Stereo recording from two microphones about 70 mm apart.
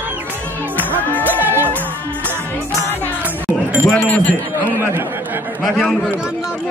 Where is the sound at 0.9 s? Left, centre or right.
Left.